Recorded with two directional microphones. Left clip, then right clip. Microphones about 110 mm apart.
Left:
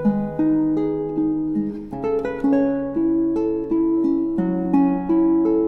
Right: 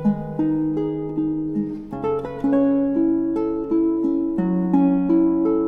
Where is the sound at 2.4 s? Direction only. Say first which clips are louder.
Right 3 dB; 20° right (ahead or behind).